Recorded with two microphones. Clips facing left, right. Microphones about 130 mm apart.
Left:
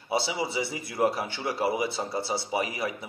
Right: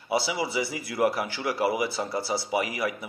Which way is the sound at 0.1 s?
25° left (ahead or behind).